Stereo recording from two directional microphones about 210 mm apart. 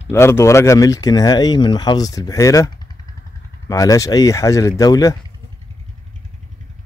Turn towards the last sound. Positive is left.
turn(degrees=20)  # may be behind; listen again after turning